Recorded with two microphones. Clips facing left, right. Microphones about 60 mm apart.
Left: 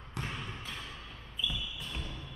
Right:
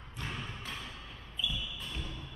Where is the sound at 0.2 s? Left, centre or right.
Left.